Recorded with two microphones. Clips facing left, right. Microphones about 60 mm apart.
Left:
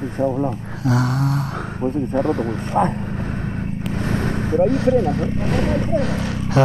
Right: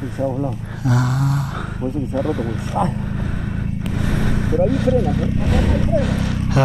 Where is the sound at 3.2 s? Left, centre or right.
Left.